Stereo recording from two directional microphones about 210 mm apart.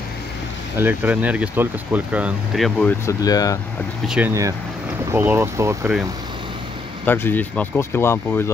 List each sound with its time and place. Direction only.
0.7 s speech: 10° right (ahead or behind); by 3.5 s 15° left (ahead or behind)
4.1 s speech: 10° right (ahead or behind)
7.1 s speech: 10° left (ahead or behind)